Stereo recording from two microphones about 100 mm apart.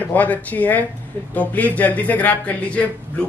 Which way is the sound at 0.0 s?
15° left (ahead or behind).